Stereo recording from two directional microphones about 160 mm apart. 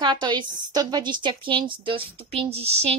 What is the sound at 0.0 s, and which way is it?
A woman's voice, 30° right (ahead or behind).